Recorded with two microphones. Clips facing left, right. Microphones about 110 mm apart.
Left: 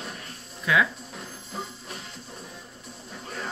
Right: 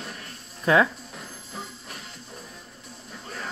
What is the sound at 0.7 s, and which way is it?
Speech, 40° right (ahead or behind).